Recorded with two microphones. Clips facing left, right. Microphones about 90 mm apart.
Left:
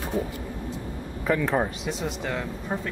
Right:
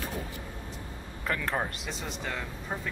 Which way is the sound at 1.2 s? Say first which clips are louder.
Left 7 dB; 5° left (ahead or behind).